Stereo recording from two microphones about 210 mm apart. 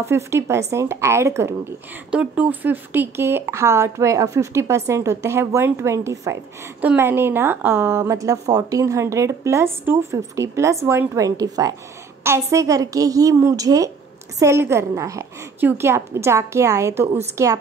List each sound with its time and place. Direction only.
0.0 s a woman's voice: 10° right (ahead or behind)